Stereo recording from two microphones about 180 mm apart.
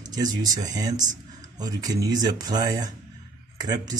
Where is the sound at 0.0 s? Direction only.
20° right (ahead or behind).